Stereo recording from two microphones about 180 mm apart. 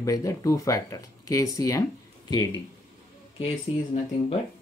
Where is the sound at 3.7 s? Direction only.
30° left (ahead or behind).